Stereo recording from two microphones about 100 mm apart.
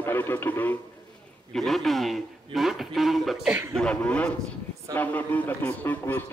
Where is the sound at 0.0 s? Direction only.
20° left (ahead or behind).